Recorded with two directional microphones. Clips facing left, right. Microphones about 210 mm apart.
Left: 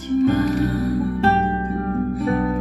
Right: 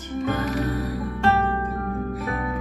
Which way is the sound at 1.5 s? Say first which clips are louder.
Left 4 dB; 30° left (ahead or behind).